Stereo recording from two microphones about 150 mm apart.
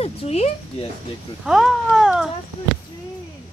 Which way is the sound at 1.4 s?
Centre (ahead or behind).